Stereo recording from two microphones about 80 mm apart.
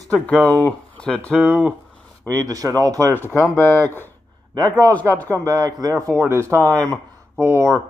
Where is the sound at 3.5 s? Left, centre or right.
Left.